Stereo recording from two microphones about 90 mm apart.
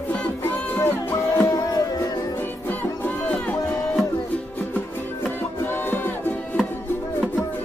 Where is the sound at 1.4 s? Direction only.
40° left (ahead or behind).